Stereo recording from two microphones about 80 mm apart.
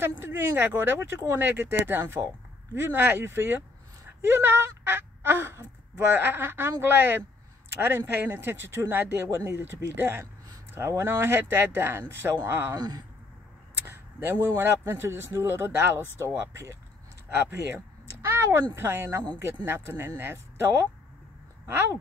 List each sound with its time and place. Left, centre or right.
0.0 s speech: right
12.7 s speech: right
13.8 s a sound: right
14.6 s speech: right